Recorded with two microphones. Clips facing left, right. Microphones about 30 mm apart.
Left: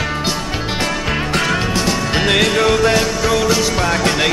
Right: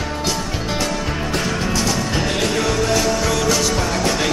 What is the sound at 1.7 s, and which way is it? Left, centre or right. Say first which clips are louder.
Music: left 3 dB; left.